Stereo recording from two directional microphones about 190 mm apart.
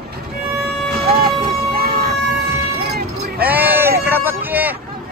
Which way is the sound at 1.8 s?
55° right (ahead or behind).